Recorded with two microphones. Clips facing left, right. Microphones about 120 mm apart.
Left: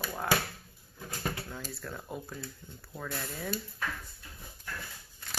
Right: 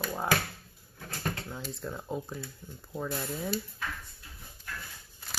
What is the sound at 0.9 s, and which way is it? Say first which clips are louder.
Speech: right 1 dB; 10° left (ahead or behind).